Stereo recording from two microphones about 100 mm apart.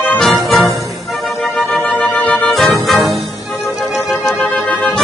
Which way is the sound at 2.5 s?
Centre (ahead or behind).